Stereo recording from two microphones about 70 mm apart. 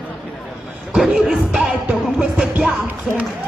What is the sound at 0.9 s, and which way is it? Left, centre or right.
Music, centre.